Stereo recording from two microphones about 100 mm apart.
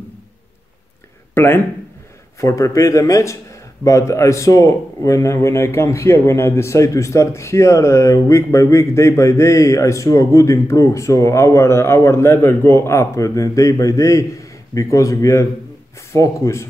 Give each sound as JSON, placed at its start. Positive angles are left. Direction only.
{"t": 1.3, "sound": "speech", "side_deg": 25}